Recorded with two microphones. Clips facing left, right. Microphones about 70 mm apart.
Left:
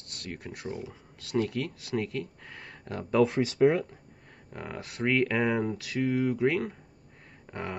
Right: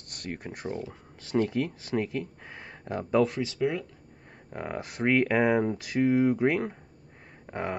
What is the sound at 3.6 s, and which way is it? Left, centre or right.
Speech, left.